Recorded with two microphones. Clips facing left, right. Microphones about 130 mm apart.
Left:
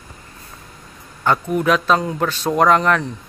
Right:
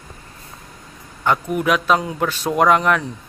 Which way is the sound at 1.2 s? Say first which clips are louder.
Left 1 dB; 10° right (ahead or behind).